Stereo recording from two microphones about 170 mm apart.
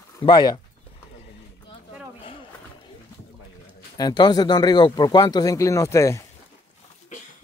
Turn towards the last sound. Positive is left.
turn(degrees=20)  # may be behind; listen again after turning